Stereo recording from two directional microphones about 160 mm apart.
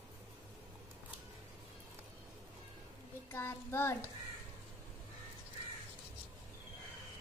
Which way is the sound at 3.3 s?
15° left (ahead or behind).